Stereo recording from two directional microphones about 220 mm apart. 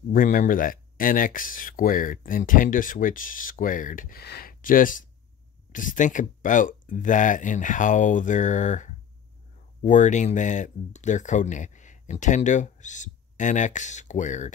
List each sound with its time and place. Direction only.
0.1 s speech: 40° left (ahead or behind)